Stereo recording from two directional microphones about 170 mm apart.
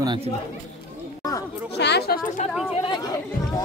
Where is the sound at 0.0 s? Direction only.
25° right (ahead or behind).